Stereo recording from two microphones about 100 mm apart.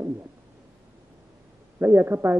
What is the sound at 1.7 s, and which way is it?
Speech, 20° right (ahead or behind).